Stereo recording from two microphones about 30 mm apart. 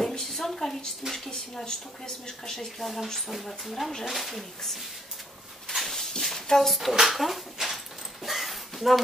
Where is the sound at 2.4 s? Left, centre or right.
Centre.